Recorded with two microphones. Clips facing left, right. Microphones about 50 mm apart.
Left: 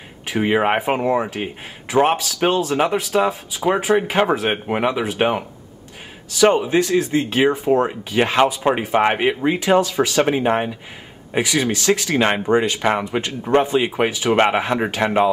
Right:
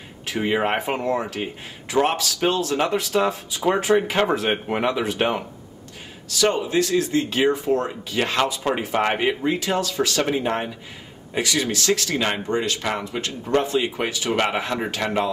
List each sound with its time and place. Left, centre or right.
0.3 s speech: centre